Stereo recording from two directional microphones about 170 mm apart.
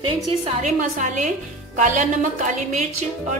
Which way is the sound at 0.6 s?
50° right (ahead or behind).